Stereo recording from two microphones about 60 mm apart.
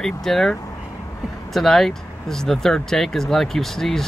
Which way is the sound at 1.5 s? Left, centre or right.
Centre.